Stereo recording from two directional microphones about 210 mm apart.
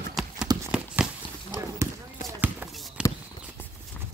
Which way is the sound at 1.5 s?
20° left (ahead or behind).